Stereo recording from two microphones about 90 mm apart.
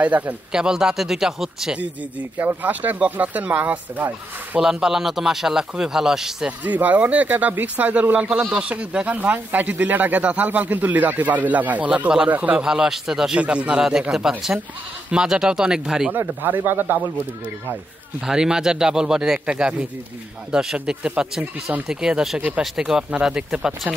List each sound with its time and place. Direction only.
0.0 s speech: 20° right (ahead or behind)
2.3 s speech: 20° right (ahead or behind)
4.6 s speech: 5° right (ahead or behind)
6.6 s speech: 20° right (ahead or behind)
16.1 s speech: 20° right (ahead or behind)
18.2 s speech: 5° right (ahead or behind)